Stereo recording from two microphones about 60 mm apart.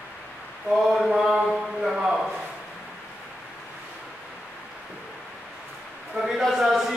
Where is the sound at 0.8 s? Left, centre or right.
Centre.